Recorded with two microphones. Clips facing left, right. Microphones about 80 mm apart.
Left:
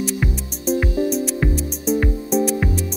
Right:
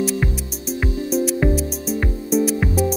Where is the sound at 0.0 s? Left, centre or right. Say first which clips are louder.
Right 2 dB; centre.